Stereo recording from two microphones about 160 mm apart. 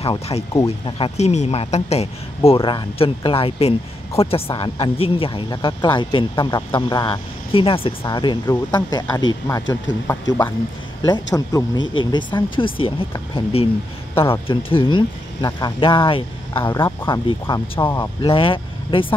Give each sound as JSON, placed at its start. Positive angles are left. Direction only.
{"t": 0.0, "sound": "speech", "side_deg": 35}
{"t": 0.5, "sound": "speech", "side_deg": 20}
{"t": 0.9, "sound": "speech", "side_deg": 40}
{"t": 16.6, "sound": "speech", "side_deg": 15}
{"t": 17.1, "sound": "speech", "side_deg": 30}
{"t": 18.2, "sound": "speech", "side_deg": 35}